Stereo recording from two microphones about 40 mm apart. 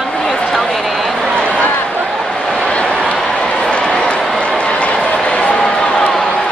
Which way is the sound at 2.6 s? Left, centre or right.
Left.